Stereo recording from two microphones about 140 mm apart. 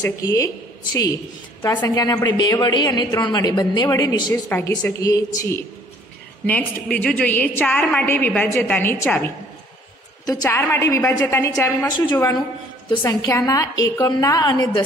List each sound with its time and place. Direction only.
0.2 s a woman's voice: 25° left (ahead or behind)
1.6 s a woman's voice: 20° left (ahead or behind)
6.4 s a woman's voice: 10° left (ahead or behind)
10.2 s a woman's voice: 25° left (ahead or behind)